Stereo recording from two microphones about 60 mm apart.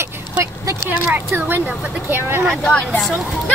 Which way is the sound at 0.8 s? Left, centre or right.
Right.